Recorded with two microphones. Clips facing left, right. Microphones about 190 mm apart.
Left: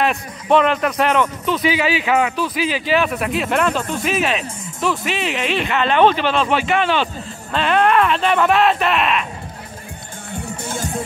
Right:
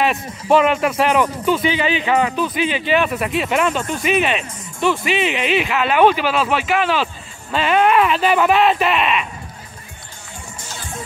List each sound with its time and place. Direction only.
0.0 s a man's voice: centre (ahead or behind)
10.3 s music: 60° left (ahead or behind)